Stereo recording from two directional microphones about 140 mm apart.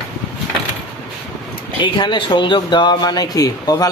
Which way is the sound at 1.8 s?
35° left (ahead or behind).